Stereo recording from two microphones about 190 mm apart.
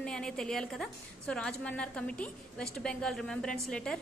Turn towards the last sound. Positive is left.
turn(degrees=5)  # may be behind; listen again after turning